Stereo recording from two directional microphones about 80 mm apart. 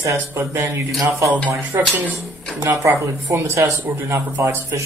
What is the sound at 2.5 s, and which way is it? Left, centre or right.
Speech, right.